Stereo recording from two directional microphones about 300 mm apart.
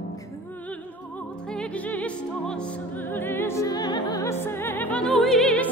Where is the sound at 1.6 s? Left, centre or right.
Centre.